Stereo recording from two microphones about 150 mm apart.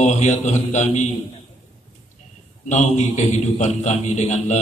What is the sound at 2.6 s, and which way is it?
A man's voice, 55° left (ahead or behind).